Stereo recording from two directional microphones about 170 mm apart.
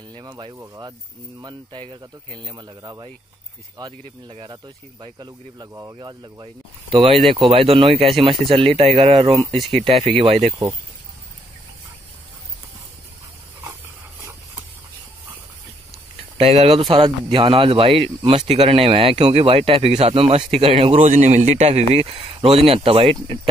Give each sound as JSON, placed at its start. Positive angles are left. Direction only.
{"t": 0.1, "sound": "speech", "side_deg": -25}
{"t": 5.0, "sound": "speech", "side_deg": -25}
{"t": 9.6, "sound": "speech", "side_deg": 0}
{"t": 10.2, "sound": "speech", "side_deg": -35}
{"t": 16.3, "sound": "speech", "side_deg": -35}